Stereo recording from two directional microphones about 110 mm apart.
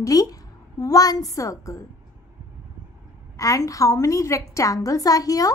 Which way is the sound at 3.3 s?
30° left (ahead or behind).